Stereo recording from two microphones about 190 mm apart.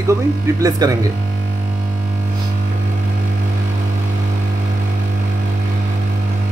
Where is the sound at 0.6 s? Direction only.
20° right (ahead or behind).